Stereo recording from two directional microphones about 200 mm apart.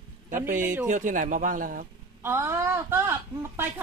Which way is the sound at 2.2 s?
10° right (ahead or behind).